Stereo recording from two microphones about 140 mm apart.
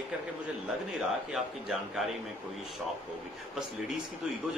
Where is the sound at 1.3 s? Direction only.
5° right (ahead or behind).